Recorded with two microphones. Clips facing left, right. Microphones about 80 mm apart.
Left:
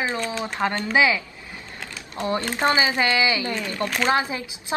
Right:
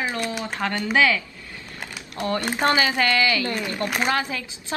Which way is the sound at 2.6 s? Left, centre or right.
Centre.